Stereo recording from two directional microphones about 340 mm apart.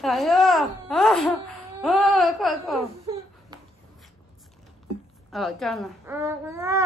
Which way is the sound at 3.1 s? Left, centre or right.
Centre.